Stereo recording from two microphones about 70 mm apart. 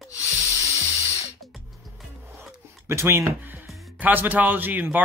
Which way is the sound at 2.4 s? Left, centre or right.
Right.